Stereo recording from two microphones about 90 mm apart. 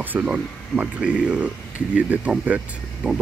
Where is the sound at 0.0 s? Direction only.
15° right (ahead or behind).